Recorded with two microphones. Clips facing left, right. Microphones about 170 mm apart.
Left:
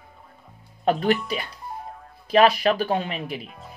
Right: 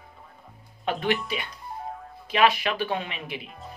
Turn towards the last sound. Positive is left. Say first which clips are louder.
# left 5 dB
turn(degrees=40)  # may be behind; listen again after turning